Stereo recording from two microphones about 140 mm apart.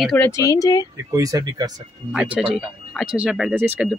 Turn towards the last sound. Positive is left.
turn(degrees=-15)  # may be behind; listen again after turning